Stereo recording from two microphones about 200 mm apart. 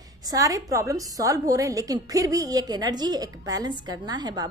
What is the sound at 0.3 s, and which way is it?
A woman's voice, 15° right (ahead or behind).